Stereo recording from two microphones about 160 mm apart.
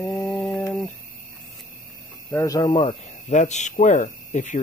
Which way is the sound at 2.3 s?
20° left (ahead or behind).